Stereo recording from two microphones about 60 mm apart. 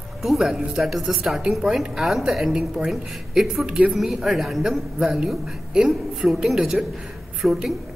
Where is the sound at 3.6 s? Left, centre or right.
Centre.